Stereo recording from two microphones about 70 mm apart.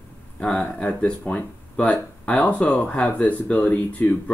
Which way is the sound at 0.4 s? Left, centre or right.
Centre.